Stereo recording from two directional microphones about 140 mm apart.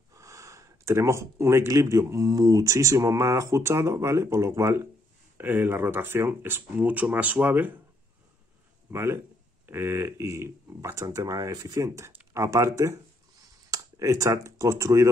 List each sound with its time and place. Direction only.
0.1 s speech: 20° right (ahead or behind)
8.9 s speech: 20° right (ahead or behind)